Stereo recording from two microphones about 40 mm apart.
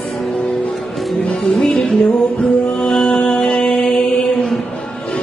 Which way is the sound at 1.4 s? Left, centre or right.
Centre.